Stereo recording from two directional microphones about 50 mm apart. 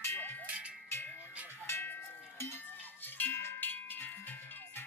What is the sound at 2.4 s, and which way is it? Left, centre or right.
Cowbell, left.